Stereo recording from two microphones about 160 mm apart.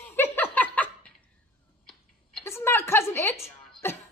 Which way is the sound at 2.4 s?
15° left (ahead or behind).